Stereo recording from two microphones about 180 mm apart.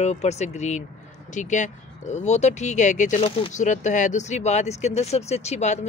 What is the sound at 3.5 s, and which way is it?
Speech, 40° left (ahead or behind).